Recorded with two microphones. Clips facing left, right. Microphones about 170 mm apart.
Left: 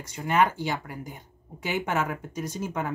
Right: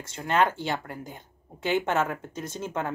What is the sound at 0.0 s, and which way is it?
Speech, 10° left (ahead or behind).